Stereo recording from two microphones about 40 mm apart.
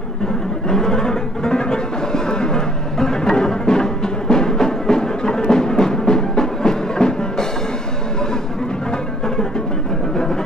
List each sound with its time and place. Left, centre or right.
0.7 s music: centre